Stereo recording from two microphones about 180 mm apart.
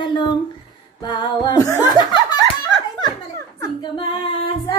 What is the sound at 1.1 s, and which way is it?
Speech, 25° left (ahead or behind).